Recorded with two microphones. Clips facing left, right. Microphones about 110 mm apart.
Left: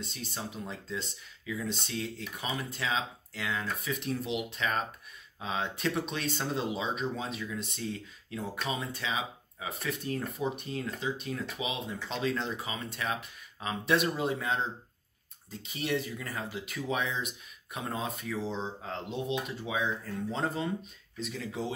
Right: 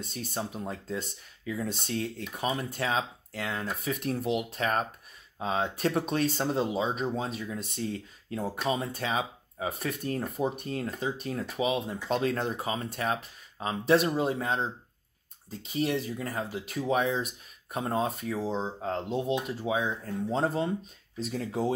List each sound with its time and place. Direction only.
0.0 s speech: 45° right (ahead or behind)
15.7 s speech: 35° right (ahead or behind)